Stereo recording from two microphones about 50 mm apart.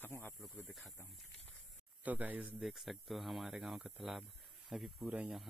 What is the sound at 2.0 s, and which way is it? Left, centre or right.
Speech, right.